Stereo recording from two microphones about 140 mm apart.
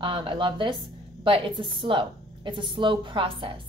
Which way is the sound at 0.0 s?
35° right (ahead or behind).